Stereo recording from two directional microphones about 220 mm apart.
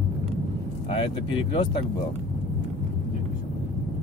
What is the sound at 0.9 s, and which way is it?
Speech, 20° left (ahead or behind).